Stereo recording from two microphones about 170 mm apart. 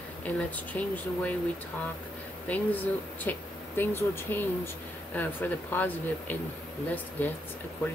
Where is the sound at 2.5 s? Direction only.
10° left (ahead or behind).